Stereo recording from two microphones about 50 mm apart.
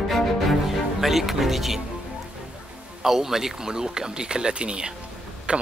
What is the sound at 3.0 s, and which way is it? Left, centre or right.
Speech, centre.